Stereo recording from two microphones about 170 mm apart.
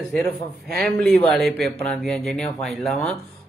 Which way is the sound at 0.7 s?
Centre (ahead or behind).